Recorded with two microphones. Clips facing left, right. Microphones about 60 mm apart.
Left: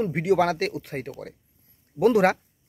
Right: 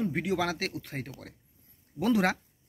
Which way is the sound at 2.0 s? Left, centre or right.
Left.